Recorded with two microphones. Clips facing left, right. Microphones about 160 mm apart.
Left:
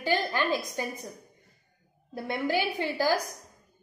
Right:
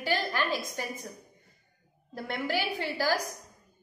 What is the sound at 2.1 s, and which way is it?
Speech, 15° left (ahead or behind).